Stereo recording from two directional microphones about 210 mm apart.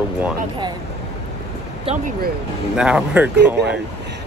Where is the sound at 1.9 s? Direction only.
25° right (ahead or behind).